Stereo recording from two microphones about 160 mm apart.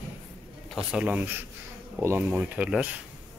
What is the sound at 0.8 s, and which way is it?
A man's voice, 5° right (ahead or behind).